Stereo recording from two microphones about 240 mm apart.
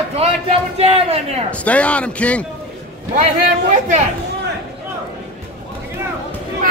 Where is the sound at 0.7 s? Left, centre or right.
Right.